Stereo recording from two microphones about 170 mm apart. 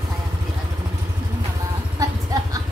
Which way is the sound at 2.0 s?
20° right (ahead or behind).